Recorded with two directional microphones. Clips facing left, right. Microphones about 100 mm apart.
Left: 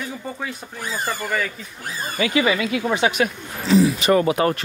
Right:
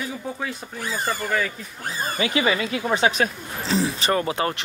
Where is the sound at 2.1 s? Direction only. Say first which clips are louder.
Left 3 dB; 30° right (ahead or behind).